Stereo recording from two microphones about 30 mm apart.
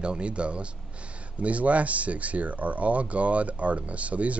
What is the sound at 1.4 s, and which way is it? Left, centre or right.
Speech, right.